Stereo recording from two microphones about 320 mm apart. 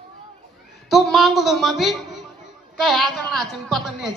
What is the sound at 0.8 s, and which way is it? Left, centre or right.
A man's voice, centre.